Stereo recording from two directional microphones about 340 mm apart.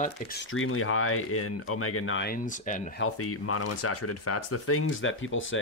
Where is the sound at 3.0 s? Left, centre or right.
Left.